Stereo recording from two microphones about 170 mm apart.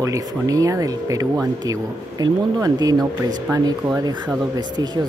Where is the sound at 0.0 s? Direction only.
20° right (ahead or behind).